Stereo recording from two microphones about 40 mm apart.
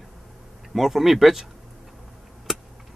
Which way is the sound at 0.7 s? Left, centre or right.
Centre.